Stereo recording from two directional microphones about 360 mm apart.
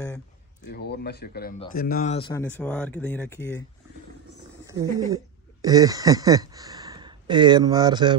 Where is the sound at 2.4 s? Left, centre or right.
Centre.